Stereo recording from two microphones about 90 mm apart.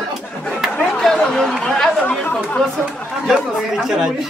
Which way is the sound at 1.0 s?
5° left (ahead or behind).